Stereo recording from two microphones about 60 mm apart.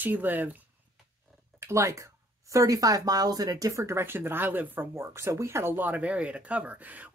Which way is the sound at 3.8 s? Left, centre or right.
Right.